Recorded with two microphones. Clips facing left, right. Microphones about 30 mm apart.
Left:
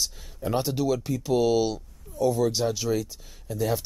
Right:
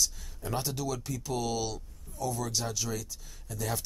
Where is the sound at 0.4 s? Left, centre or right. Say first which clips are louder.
Left 8 dB; left.